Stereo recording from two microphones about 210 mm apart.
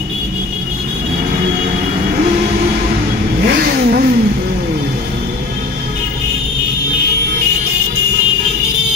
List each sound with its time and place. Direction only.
3.4 s vehicle: 50° right (ahead or behind)